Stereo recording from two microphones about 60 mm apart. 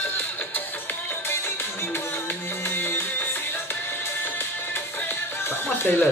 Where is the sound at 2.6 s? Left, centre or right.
Left.